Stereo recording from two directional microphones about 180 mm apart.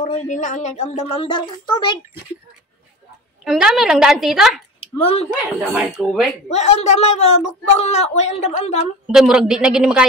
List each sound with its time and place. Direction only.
0.0 s a woman's voice: 45° left (ahead or behind); by 2.0 s 25° left (ahead or behind)
3.4 s a woman's voice: centre (ahead or behind)
4.7 s a sound: 35° left (ahead or behind)
5.3 s a woman's voice: 5° right (ahead or behind)
6.5 s a woman's voice: 35° left (ahead or behind)
9.0 s a woman's voice: 5° right (ahead or behind)